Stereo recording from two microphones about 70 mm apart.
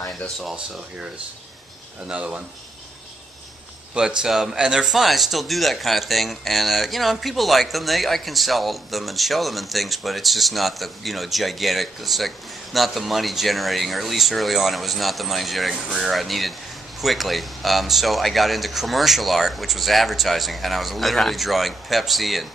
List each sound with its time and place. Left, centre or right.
2.0 s speech: centre
4.2 s speech: centre